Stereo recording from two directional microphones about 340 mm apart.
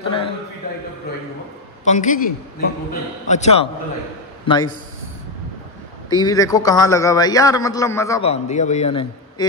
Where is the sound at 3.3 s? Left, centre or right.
Centre.